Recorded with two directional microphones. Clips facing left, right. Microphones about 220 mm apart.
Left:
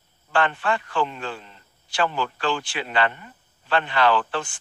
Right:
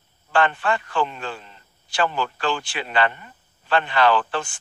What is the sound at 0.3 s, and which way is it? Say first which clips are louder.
Speech: right 2 dB; 45° right (ahead or behind).